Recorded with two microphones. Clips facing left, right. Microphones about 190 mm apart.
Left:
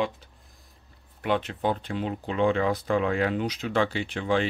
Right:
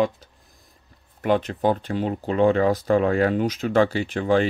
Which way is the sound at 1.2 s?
40° right (ahead or behind).